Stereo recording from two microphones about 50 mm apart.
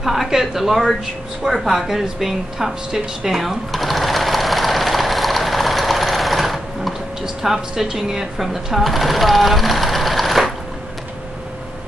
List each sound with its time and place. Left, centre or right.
0.0 s a woman's voice: centre
1.4 s a sound: centre
7.4 s speech: centre